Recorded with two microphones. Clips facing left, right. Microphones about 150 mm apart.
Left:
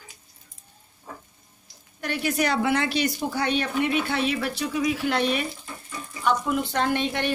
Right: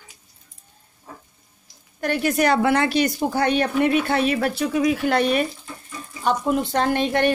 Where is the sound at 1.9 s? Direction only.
50° right (ahead or behind).